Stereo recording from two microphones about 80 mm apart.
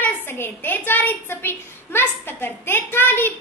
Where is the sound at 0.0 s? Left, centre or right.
Left.